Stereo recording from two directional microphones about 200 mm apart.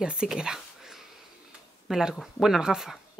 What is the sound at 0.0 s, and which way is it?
Speech, 5° right (ahead or behind).